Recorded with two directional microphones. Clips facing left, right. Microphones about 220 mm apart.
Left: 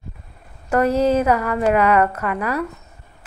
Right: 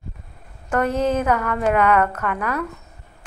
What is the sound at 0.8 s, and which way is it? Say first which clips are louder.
Speech: left 4 dB; 35° left (ahead or behind).